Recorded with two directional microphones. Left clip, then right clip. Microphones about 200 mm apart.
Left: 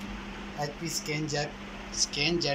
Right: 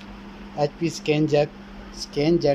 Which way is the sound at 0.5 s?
55° right (ahead or behind).